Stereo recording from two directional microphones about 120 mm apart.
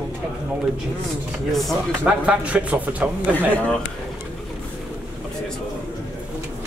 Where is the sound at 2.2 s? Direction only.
10° right (ahead or behind).